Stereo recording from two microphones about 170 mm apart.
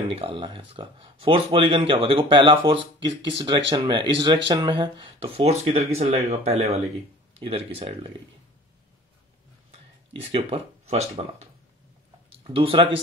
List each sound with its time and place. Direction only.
0.1 s speech: 30° right (ahead or behind)
10.3 s speech: 35° right (ahead or behind)
12.4 s speech: 30° right (ahead or behind)